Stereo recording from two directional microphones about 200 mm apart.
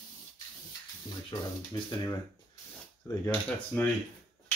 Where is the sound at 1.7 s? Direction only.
20° left (ahead or behind).